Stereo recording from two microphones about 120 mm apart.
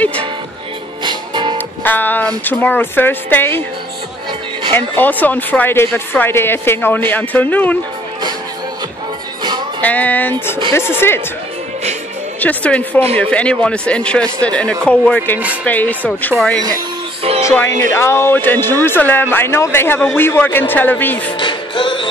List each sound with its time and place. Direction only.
1.0 s music: 40° right (ahead or behind)
1.9 s speech: 15° left (ahead or behind)
4.7 s speech: 15° left (ahead or behind)
9.8 s speech: 15° left (ahead or behind)
12.4 s speech: 10° left (ahead or behind)
17.4 s speech: 25° left (ahead or behind)
21.4 s music: 40° left (ahead or behind)